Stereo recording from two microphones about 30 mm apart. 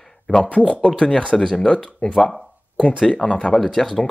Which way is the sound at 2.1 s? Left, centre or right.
Centre.